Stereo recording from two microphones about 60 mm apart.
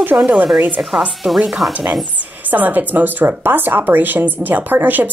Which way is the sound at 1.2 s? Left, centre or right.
Centre.